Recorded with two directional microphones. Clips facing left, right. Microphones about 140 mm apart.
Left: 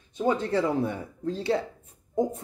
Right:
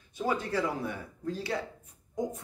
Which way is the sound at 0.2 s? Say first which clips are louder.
Left 5 dB; 25° left (ahead or behind).